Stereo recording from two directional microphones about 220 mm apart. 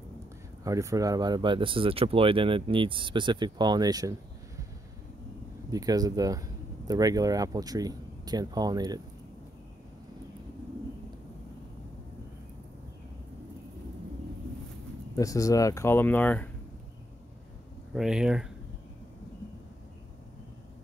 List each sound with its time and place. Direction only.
0.7 s speech: 15° right (ahead or behind)
5.7 s speech: 15° right (ahead or behind)
15.1 s speech: 15° left (ahead or behind)
17.9 s speech: 5° right (ahead or behind)